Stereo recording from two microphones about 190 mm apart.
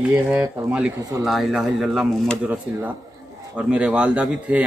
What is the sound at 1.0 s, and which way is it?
Speech, 20° right (ahead or behind).